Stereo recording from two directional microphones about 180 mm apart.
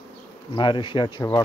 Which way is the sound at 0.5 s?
25° left (ahead or behind).